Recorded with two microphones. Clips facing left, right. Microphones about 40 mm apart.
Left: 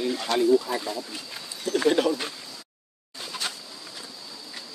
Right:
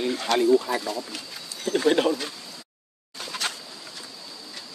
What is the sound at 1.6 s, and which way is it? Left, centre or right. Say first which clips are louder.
Speech: right 1 dB; right.